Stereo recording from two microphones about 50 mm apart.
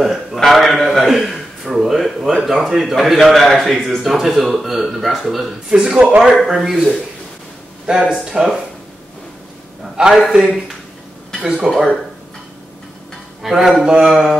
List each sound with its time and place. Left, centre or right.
0.0 s a man's voice: centre
5.7 s speech: centre
6.4 s a man's voice: centre
9.9 s speech: centre
11.7 s a man's voice: centre
13.4 s speech: centre